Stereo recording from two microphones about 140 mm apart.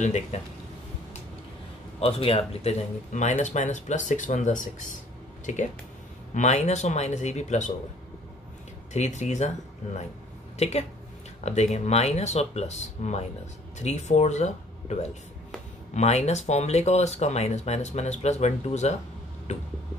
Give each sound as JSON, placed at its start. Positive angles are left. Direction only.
{"t": 0.0, "sound": "speech", "side_deg": 55}
{"t": 2.0, "sound": "speech", "side_deg": 45}
{"t": 8.9, "sound": "speech", "side_deg": 55}
{"t": 10.6, "sound": "speech", "side_deg": 50}